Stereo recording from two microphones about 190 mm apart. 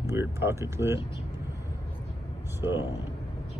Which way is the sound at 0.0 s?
10° right (ahead or behind).